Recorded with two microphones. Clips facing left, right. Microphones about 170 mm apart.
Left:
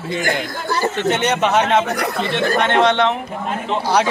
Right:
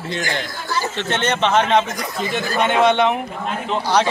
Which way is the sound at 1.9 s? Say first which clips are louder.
Left 3 dB; 65° left (ahead or behind).